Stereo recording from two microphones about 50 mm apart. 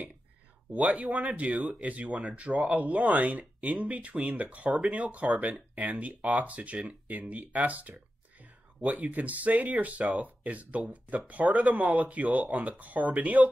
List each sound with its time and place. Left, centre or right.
0.7 s speech: right